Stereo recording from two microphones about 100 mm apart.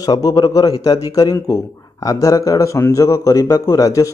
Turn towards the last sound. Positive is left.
turn(degrees=30)  # may be behind; listen again after turning